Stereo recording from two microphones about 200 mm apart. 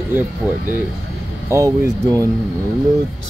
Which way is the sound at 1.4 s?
15° right (ahead or behind).